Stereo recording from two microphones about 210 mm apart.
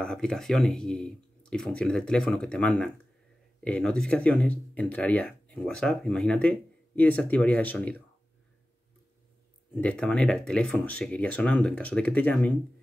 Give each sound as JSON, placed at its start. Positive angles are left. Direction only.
{"t": 0.0, "sound": "speech", "side_deg": 5}
{"t": 9.8, "sound": "speech", "side_deg": 5}